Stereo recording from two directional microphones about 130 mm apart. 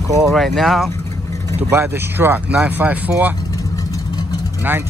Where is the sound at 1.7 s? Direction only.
15° right (ahead or behind).